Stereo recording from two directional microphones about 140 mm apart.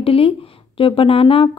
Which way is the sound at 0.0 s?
40° left (ahead or behind).